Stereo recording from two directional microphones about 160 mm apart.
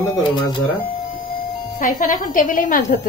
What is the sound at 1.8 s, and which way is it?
A woman's voice, 55° left (ahead or behind).